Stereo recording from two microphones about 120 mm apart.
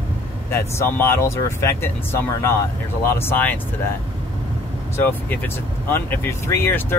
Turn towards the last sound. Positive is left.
turn(degrees=20)  # may be behind; listen again after turning